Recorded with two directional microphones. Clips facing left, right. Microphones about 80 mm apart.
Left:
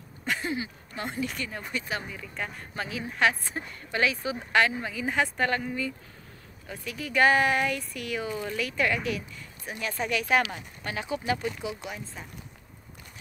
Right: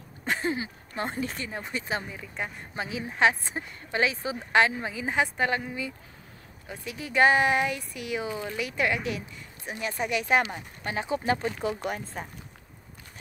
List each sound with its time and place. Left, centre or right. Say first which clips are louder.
0.2 s speech: right 2 dB; right
11.6 s speech: right 5 dB; right